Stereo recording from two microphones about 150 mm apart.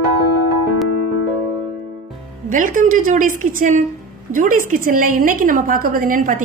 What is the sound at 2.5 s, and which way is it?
A woman's voice, 60° right (ahead or behind).